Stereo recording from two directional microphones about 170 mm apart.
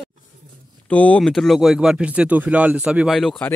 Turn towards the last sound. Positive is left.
turn(degrees=5)  # may be behind; listen again after turning